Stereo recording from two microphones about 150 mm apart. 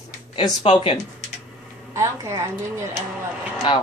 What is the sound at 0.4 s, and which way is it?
Speech, 30° left (ahead or behind).